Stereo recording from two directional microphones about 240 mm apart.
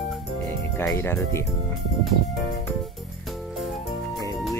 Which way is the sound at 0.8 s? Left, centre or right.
Centre.